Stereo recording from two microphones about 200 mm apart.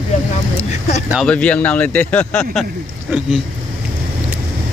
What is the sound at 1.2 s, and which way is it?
A man's voice, 5° left (ahead or behind).